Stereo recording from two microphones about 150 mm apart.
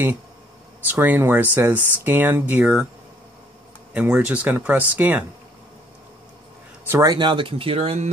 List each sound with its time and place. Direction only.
0.8 s speech: 15° right (ahead or behind)
3.9 s speech: 10° right (ahead or behind)
6.9 s speech: 25° right (ahead or behind); by 8.1 s 40° right (ahead or behind)